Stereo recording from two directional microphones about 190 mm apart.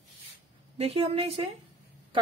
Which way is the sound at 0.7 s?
30° right (ahead or behind).